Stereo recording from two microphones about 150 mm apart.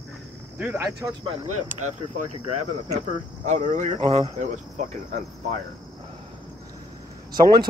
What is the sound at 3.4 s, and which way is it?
Speech, 50° right (ahead or behind).